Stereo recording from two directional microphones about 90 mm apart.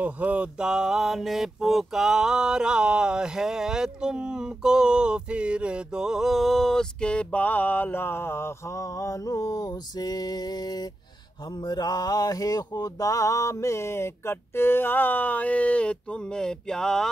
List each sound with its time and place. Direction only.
0.0 s mantra: 15° right (ahead or behind); by 17.1 s 5° left (ahead or behind)